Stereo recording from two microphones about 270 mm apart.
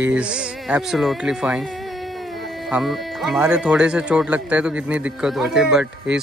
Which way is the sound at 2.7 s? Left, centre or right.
Centre.